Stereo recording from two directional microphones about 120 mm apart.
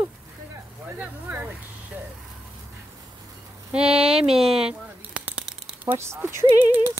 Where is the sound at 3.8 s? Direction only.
55° right (ahead or behind).